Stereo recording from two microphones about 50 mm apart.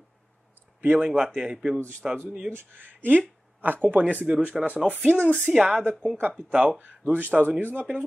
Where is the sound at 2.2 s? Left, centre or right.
Centre.